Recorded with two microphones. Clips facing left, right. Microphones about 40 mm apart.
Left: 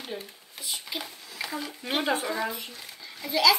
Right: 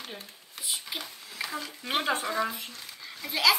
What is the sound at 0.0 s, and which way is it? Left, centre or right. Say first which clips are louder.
Speech: left 5 dB; centre.